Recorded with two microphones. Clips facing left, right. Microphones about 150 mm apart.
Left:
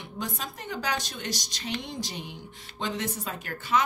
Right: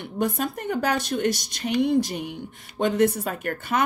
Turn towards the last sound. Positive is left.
turn(degrees=-60)  # may be behind; listen again after turning